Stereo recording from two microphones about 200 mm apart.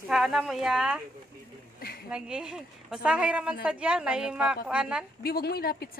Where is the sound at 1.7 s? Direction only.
50° left (ahead or behind).